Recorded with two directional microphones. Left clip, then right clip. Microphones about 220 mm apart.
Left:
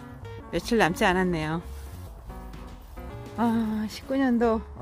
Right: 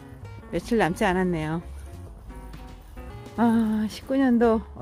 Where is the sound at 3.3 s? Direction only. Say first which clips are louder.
Right 3 dB; 20° right (ahead or behind).